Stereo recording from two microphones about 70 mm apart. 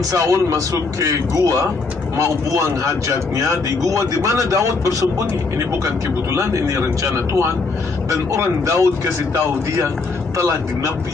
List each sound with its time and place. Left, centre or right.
0.1 s speech: right